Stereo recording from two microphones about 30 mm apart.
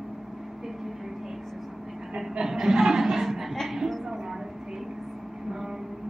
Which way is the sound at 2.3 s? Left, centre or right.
Centre.